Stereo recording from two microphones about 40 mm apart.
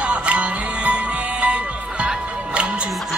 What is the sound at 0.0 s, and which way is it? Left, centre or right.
Music, right.